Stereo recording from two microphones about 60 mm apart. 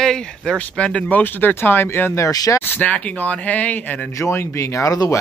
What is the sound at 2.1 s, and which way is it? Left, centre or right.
Speech, left.